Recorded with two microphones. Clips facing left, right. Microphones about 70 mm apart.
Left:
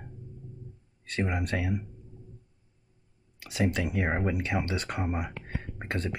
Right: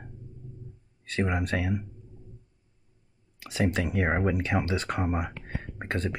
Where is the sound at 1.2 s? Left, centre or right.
Right.